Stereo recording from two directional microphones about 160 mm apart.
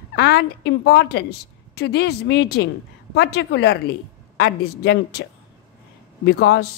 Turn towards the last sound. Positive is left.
turn(degrees=90)